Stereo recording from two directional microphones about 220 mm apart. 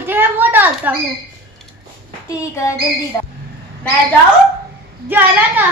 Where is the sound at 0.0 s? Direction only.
10° right (ahead or behind).